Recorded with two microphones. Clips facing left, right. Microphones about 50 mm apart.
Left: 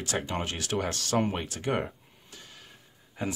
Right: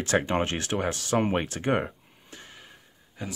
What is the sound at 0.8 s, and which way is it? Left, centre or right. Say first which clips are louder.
Speech: right 2 dB; centre.